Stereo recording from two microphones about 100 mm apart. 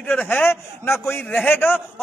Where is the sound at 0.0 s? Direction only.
15° left (ahead or behind).